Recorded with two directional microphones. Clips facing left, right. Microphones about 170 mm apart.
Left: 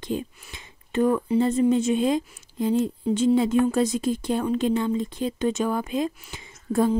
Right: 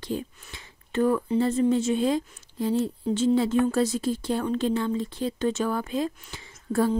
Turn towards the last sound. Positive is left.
turn(degrees=15)  # may be behind; listen again after turning